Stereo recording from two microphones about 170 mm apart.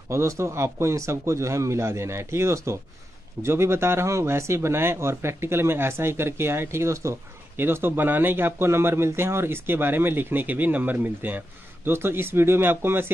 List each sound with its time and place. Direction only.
0.1 s speech: 15° right (ahead or behind)